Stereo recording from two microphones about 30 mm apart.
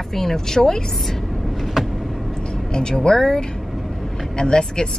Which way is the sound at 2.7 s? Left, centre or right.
Left.